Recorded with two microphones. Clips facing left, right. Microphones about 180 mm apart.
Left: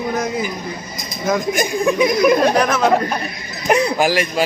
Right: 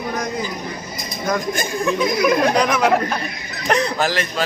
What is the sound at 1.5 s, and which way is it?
Speech, 15° left (ahead or behind).